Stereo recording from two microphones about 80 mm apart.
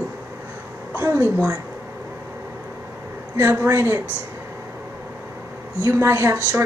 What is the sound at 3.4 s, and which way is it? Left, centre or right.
Speech, right.